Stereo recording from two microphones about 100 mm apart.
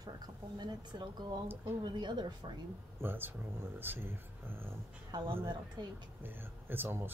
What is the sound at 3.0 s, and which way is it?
Speech, 20° right (ahead or behind).